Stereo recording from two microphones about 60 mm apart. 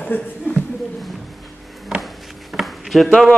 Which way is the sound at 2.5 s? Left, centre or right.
Centre.